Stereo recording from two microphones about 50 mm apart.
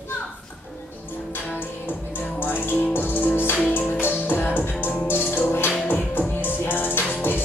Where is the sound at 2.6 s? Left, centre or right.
Left.